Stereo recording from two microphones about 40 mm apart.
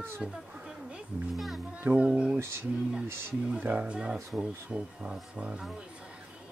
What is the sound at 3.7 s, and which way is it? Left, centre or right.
Speech, right.